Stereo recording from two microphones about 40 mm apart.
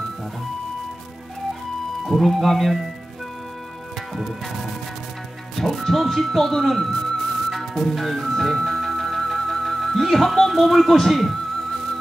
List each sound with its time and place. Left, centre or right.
2.1 s speech: centre
4.2 s speech: centre
7.4 s music: centre
9.8 s speech: centre